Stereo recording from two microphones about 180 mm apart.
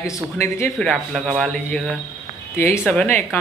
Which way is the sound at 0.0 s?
15° left (ahead or behind).